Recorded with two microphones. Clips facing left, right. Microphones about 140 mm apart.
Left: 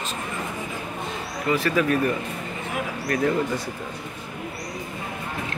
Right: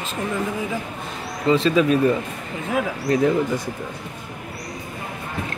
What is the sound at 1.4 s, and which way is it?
Speech, 25° right (ahead or behind).